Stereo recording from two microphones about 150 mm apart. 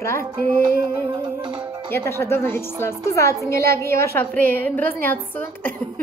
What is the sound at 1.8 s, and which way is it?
A woman's voice, 15° left (ahead or behind).